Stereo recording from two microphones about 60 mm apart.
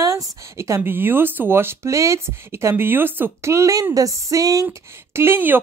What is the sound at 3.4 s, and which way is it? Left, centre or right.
Speech, right.